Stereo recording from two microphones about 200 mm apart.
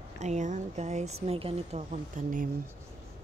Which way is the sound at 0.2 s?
35° right (ahead or behind).